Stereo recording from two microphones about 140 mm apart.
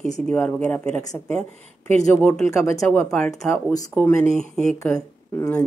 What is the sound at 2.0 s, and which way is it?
Speech, 15° left (ahead or behind).